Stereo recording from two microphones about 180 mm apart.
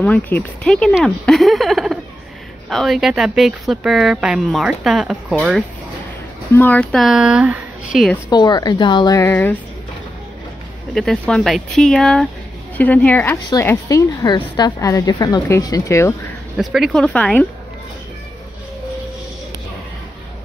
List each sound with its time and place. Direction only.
0.0 s speech: 10° left (ahead or behind)
6.5 s speech: 10° left (ahead or behind)
8.3 s a woman's voice: 25° left (ahead or behind)
9.2 s a woman's voice: 10° left (ahead or behind)
11.0 s a woman's voice: 5° left (ahead or behind)
16.5 s speech: centre (ahead or behind)